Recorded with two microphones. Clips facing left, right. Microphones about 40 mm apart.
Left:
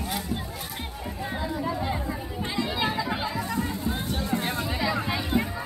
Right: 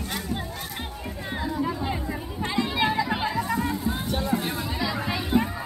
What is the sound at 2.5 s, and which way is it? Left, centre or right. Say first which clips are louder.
Chatter: right 3 dB; centre.